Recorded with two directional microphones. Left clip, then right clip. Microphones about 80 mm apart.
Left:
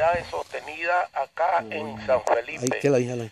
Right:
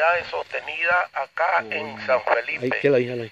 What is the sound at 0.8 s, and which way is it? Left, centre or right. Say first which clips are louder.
Speech: right 2 dB; left.